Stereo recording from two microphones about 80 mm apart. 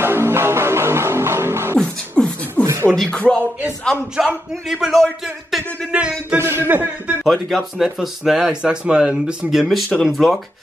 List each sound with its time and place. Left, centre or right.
0.0 s music: right
1.8 s beatboxing: centre
2.6 s a sound: right
3.0 s music: centre
4.2 s speech: centre
5.9 s a sound: centre
6.3 s speech: right
7.2 s speech: centre